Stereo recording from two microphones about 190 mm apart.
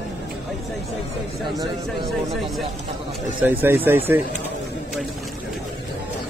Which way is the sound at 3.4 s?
10° right (ahead or behind).